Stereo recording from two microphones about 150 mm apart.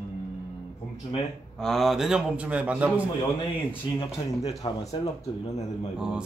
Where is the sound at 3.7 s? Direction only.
35° left (ahead or behind).